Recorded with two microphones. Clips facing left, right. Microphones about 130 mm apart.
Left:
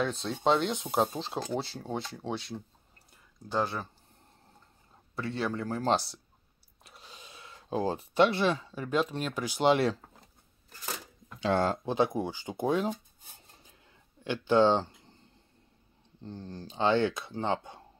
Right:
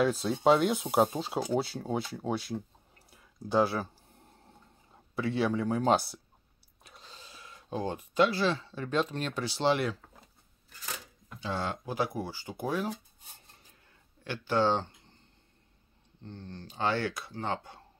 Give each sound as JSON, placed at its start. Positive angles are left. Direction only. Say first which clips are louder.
{"t": 0.0, "sound": "speech", "louder": "right 3 dB", "side_deg": -5}
{"t": 3.1, "sound": "a sound", "louder": "right 5 dB", "side_deg": -10}
{"t": 5.1, "sound": "speech", "louder": "right 4 dB", "side_deg": 0}
{"t": 6.8, "sound": "a sound", "louder": "even", "side_deg": 5}
{"t": 7.1, "sound": "speech", "louder": "left 1 dB", "side_deg": 20}
{"t": 11.3, "sound": "speech", "louder": "left 8 dB", "side_deg": 80}
{"t": 11.8, "sound": "speech", "louder": "left 5 dB", "side_deg": 25}
{"t": 14.2, "sound": "speech", "louder": "left 4 dB", "side_deg": 20}
{"t": 16.6, "sound": "speech", "louder": "left 5 dB", "side_deg": 20}